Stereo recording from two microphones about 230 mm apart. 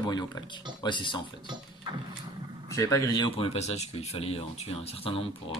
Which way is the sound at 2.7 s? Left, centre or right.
Centre.